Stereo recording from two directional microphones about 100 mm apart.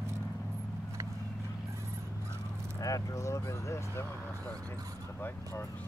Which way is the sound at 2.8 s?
35° left (ahead or behind).